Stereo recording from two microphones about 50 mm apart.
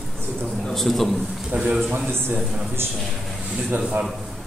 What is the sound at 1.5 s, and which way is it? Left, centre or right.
Speech, right.